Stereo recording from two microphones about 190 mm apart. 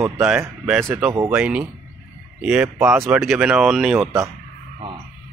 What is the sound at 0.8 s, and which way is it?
Speech, 10° right (ahead or behind).